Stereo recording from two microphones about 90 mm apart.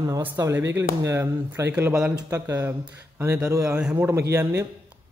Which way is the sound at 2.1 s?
35° right (ahead or behind).